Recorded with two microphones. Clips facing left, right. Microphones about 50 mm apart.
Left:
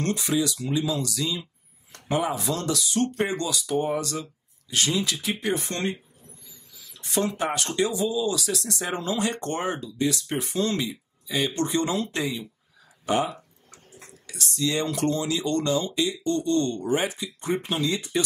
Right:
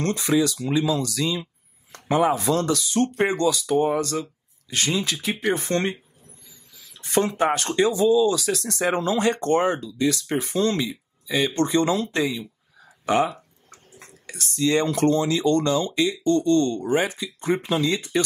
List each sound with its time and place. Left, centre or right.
0.0 s speech: right
9.9 s speech: right
10.8 s speech: right